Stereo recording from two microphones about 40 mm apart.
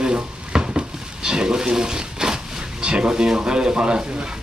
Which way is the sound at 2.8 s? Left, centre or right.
Right.